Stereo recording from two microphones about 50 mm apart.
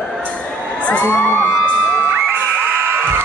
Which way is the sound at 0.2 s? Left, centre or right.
Left.